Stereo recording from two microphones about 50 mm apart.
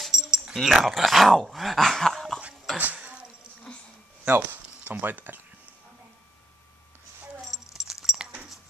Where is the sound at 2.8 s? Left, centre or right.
Right.